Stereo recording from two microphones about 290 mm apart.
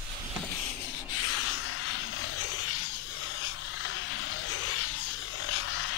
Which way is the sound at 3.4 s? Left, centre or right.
Left.